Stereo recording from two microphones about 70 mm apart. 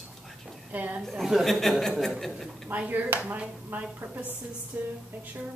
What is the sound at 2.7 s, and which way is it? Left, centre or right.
Speech, right.